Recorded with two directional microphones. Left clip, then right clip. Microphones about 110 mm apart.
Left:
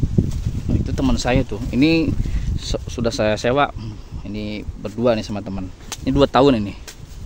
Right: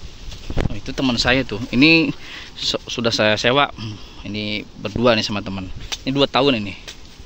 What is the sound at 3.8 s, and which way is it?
Speech, 5° left (ahead or behind).